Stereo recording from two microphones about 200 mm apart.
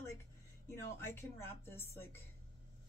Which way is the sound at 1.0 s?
10° left (ahead or behind).